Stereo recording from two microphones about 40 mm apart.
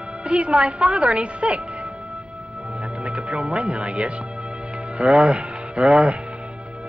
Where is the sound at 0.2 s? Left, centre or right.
Right.